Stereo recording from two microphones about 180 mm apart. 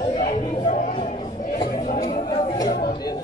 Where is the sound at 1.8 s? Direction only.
45° left (ahead or behind).